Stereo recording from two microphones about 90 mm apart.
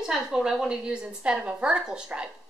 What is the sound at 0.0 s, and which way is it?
A woman's voice, 5° right (ahead or behind).